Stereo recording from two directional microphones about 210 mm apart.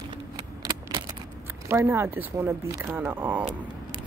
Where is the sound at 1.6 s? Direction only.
10° right (ahead or behind).